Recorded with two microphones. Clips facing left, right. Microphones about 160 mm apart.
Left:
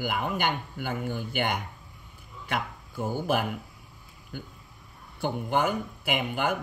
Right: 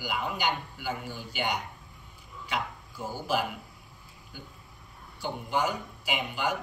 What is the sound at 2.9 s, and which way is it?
Speech, 55° left (ahead or behind).